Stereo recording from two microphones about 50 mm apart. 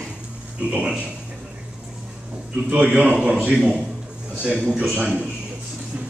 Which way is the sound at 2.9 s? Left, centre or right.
Centre.